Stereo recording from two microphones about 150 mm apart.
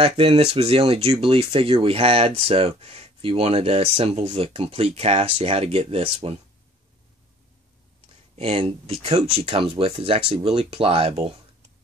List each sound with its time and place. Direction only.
0.0 s speech: 40° right (ahead or behind)
8.4 s speech: 40° right (ahead or behind)